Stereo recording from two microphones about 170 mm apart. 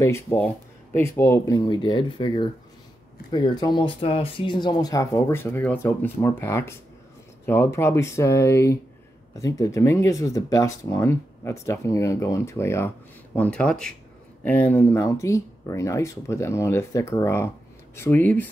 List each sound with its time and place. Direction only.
0.0 s speech: 15° left (ahead or behind)